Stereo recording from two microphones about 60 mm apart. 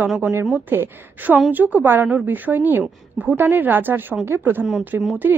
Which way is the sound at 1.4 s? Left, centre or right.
Right.